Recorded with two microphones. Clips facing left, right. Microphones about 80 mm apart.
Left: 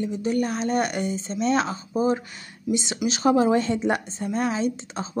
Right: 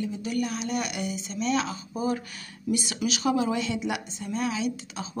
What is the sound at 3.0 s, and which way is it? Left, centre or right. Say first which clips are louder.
Speech: left 6 dB; left.